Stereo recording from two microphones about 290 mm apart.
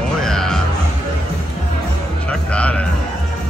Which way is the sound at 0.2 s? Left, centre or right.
Centre.